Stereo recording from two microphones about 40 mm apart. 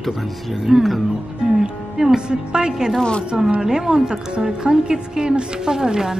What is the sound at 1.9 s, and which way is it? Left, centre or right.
A woman's voice, centre.